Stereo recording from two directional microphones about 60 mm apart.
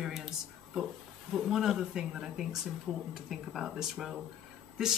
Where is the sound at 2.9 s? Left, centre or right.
Left.